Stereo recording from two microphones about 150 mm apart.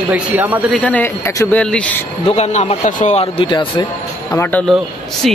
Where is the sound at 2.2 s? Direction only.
45° left (ahead or behind).